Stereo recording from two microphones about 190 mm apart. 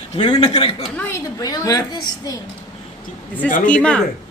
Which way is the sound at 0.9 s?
10° left (ahead or behind).